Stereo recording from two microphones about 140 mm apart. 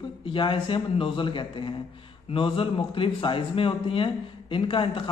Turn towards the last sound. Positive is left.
turn(degrees=40)  # may be behind; listen again after turning